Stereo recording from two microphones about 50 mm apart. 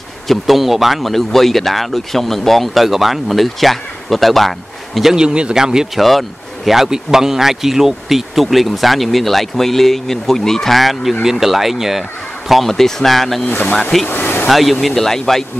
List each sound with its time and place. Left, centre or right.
0.3 s speech: centre
5.1 s a man's voice: centre
5.9 s speech: centre
13.5 s speech: left
14.0 s a sound: left
14.5 s speech: centre